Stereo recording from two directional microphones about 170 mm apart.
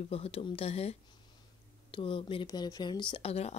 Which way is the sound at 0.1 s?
35° left (ahead or behind).